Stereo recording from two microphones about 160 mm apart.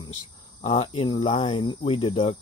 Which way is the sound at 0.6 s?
40° left (ahead or behind).